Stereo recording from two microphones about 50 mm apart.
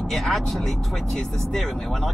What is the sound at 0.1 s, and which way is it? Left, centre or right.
Speech, centre.